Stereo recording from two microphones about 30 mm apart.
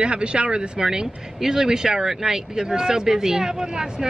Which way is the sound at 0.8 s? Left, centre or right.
Centre.